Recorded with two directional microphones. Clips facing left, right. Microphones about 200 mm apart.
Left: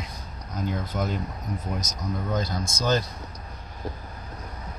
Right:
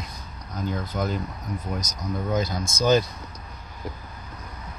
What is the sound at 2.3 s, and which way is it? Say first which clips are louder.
Speech: right 4 dB; 10° right (ahead or behind).